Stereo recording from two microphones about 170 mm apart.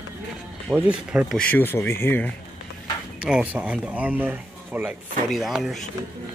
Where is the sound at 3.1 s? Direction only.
5° right (ahead or behind).